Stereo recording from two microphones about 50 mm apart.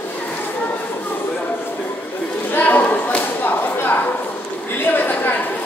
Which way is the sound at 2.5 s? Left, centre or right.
Left.